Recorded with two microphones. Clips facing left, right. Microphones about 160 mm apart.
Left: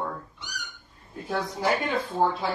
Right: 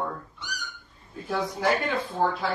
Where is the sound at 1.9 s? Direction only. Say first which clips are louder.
Left 1 dB; 20° left (ahead or behind).